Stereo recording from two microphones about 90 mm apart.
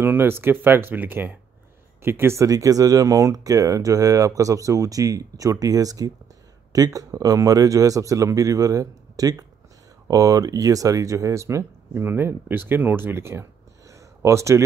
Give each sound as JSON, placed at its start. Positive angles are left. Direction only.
{"t": 0.0, "sound": "speech", "side_deg": -25}